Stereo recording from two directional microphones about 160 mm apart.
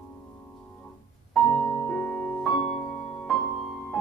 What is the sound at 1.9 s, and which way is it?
Music, 5° left (ahead or behind).